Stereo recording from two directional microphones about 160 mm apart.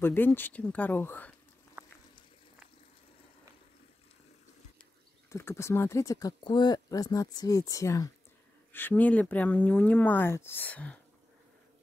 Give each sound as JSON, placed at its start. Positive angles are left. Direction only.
{"t": 0.0, "sound": "speech", "side_deg": 10}
{"t": 5.3, "sound": "speech", "side_deg": 15}